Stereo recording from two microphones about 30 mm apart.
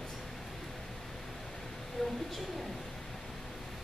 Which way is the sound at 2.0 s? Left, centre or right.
Centre.